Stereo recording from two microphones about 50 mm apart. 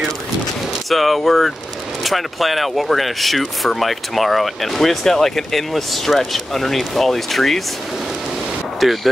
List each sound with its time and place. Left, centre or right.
0.8 s speech: centre
8.7 s speech: centre